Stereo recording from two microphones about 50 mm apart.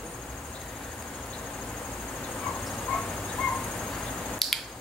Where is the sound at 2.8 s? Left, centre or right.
Centre.